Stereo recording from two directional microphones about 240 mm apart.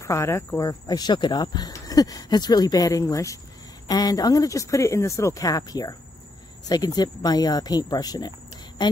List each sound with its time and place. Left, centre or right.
0.0 s speech: centre